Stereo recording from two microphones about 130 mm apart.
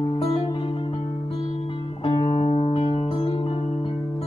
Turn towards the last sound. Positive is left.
turn(degrees=50)  # may be behind; listen again after turning